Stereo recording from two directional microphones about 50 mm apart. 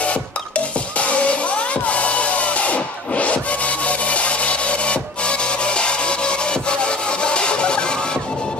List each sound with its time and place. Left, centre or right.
0.9 s music: left